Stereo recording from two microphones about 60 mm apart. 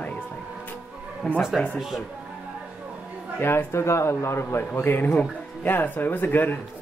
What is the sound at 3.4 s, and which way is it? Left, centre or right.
A man's voice, left.